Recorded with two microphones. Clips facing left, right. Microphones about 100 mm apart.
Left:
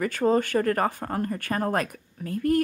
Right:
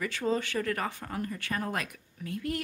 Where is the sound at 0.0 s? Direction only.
45° left (ahead or behind).